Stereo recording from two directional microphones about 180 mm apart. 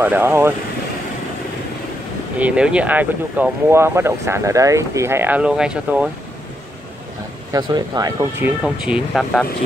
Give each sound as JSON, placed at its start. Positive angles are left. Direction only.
{"t": 0.0, "sound": "speech", "side_deg": -10}
{"t": 2.3, "sound": "speech", "side_deg": -5}
{"t": 7.5, "sound": "speech", "side_deg": -20}
{"t": 8.6, "sound": "speech", "side_deg": -5}